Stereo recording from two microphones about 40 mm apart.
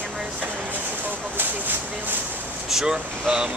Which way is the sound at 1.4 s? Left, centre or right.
Right.